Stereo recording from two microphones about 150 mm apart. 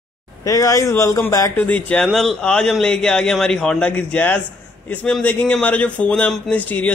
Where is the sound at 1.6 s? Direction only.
10° left (ahead or behind).